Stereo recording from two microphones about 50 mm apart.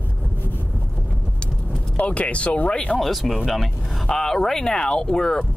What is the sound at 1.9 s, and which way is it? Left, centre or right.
Speech, left.